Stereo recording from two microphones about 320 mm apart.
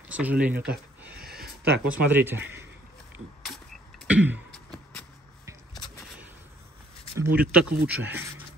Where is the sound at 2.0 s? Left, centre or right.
Centre.